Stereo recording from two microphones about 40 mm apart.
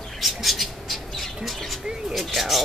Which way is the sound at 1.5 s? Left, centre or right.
Centre.